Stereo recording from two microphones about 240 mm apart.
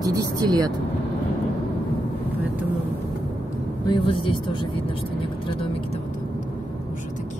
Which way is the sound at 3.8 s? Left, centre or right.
Left.